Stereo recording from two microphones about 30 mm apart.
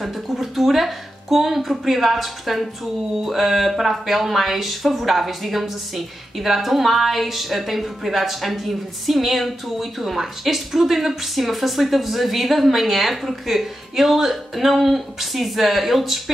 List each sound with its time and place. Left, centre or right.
0.0 s speech: centre